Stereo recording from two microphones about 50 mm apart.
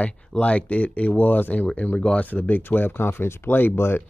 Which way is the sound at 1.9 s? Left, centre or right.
Left.